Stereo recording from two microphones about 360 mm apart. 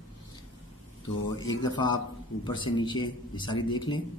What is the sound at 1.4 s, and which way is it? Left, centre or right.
Speech, centre.